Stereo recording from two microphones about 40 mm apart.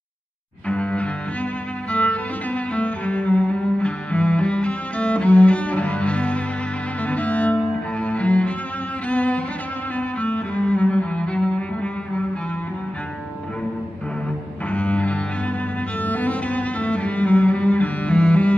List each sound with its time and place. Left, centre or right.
0.7 s music: left
9.9 s cello: left
14.7 s cello: left